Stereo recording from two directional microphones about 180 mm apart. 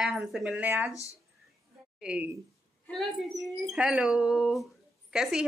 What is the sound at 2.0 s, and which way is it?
A woman's voice, 5° right (ahead or behind).